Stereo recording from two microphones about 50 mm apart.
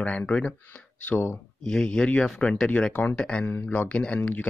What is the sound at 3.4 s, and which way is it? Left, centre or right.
Speech, left.